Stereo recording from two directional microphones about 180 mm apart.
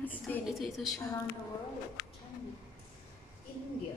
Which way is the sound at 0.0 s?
10° left (ahead or behind).